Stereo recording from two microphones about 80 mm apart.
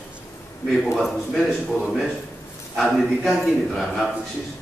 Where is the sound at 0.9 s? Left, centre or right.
Centre.